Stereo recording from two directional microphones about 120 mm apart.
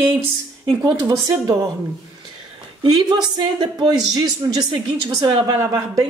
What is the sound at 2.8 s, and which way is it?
Speech, 40° right (ahead or behind).